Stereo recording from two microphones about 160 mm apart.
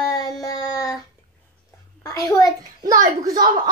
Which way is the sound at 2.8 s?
20° right (ahead or behind).